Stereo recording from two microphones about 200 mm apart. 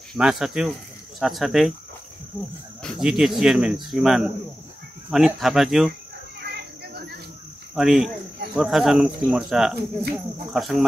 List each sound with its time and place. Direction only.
0.1 s speech: centre (ahead or behind)
2.8 s speech: centre (ahead or behind)
6.5 s a sound: 55° right (ahead or behind)
7.7 s speech: centre (ahead or behind)